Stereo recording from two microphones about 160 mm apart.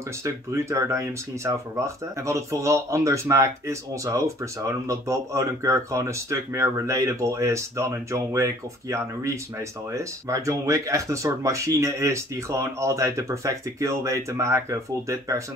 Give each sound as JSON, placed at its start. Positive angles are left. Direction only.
{"t": 0.2, "sound": "speech", "side_deg": -15}